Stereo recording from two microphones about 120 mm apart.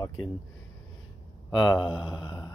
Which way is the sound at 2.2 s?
40° left (ahead or behind).